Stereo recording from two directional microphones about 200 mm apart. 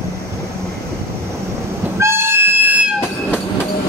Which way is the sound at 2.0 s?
10° right (ahead or behind).